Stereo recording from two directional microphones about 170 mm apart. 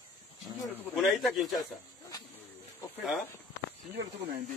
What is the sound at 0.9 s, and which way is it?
Speech, centre (ahead or behind).